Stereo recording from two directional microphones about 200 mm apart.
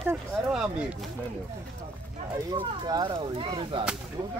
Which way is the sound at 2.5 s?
20° right (ahead or behind).